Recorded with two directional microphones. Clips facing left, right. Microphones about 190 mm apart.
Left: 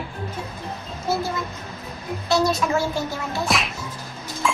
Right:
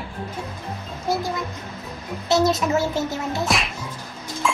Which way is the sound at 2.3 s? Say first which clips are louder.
Right 2 dB; 20° right (ahead or behind).